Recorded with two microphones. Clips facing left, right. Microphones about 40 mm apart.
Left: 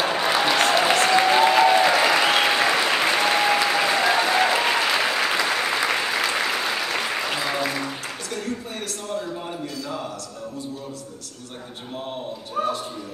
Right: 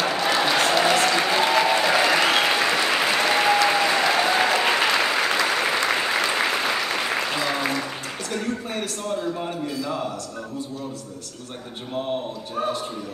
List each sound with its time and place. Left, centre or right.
0.1 s applause: left
0.5 s applause: centre
12.6 s a sound: centre